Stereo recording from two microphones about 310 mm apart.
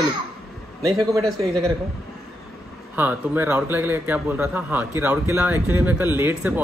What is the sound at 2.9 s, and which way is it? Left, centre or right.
A man's voice, centre.